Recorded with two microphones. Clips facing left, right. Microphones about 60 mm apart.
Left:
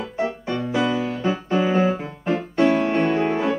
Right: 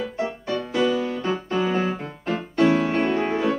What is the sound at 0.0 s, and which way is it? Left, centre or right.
Music, centre.